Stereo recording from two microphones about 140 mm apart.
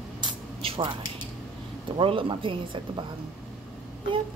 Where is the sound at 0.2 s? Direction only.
40° right (ahead or behind).